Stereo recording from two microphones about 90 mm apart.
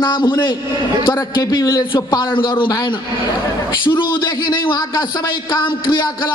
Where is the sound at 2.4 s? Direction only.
70° left (ahead or behind).